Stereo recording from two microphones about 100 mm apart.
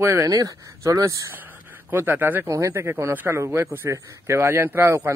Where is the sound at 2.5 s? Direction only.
30° right (ahead or behind).